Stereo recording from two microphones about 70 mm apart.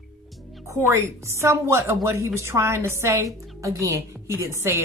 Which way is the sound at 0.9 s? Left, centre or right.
Right.